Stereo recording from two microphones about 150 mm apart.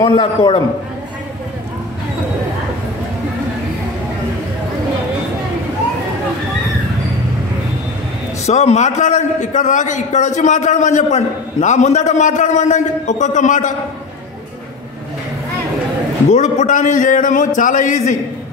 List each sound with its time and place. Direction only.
0.0 s a man's voice: 30° left (ahead or behind)
8.5 s a man's voice: 45° left (ahead or behind)
16.3 s a man's voice: 50° left (ahead or behind)